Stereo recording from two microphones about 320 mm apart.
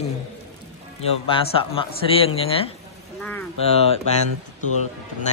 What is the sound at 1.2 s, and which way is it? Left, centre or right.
Speech, centre.